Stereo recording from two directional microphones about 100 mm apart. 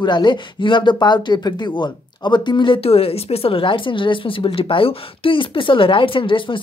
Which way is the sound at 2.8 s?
80° left.